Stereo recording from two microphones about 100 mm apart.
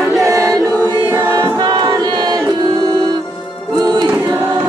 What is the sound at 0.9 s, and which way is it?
Choir, 20° right (ahead or behind).